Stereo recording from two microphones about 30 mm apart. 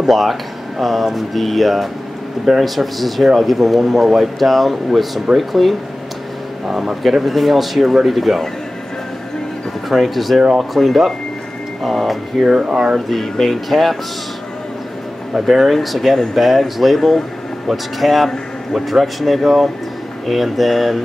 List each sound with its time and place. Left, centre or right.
0.1 s speech: centre
6.7 s speech: centre
7.2 s speech: centre
9.8 s speech: centre
12.4 s speech: centre
12.6 s speech: right
12.9 s speech: centre
15.3 s speech: centre
15.7 s speech: centre